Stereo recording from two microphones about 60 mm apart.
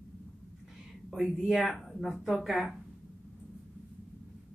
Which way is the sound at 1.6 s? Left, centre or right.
Centre.